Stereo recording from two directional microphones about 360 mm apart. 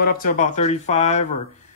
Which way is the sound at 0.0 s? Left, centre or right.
Left.